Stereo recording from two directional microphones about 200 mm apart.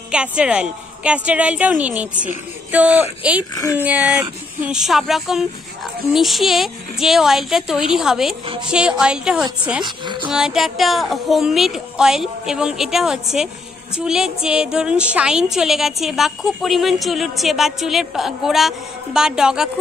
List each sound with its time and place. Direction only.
0.1 s a woman's voice: 5° right (ahead or behind)
9.8 s speech: 25° right (ahead or behind)
10.2 s a woman's voice: 5° right (ahead or behind)